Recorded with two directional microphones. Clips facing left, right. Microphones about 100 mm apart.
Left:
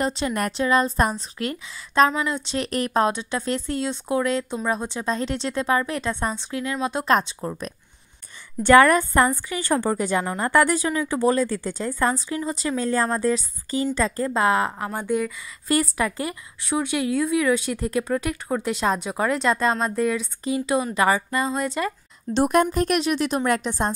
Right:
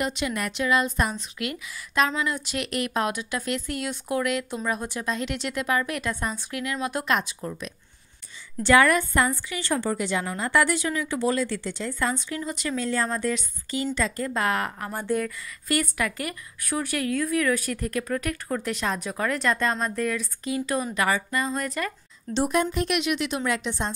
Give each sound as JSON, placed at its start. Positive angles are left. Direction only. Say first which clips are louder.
{"t": 0.0, "sound": "a woman's voice", "louder": "left 4 dB", "side_deg": 35}
{"t": 7.1, "sound": "a woman's voice", "louder": "left 5 dB", "side_deg": 35}
{"t": 10.9, "sound": "a woman's voice", "louder": "left 4 dB", "side_deg": 30}
{"t": 15.7, "sound": "a woman's voice", "louder": "left 4 dB", "side_deg": 30}
{"t": 22.3, "sound": "a woman's voice", "louder": "left 5 dB", "side_deg": 55}
{"t": 22.7, "sound": "a woman's voice", "louder": "left 4 dB", "side_deg": 40}